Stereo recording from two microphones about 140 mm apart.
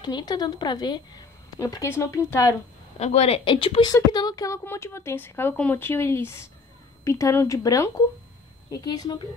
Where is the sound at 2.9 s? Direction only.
50° left (ahead or behind).